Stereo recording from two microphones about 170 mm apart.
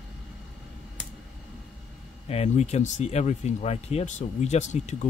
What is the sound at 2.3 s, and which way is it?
Speech, 40° left (ahead or behind).